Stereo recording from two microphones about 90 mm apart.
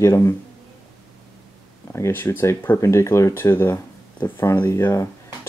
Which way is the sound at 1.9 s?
30° left (ahead or behind).